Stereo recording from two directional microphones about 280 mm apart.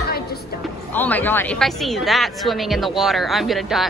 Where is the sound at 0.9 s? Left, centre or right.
Centre.